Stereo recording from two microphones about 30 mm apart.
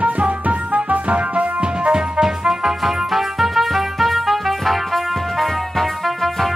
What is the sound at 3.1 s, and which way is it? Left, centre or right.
Music, centre.